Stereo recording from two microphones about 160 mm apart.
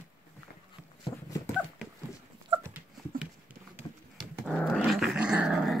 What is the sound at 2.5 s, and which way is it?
Dog, 15° right (ahead or behind).